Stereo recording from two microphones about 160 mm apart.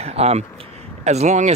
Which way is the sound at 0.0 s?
40° right (ahead or behind).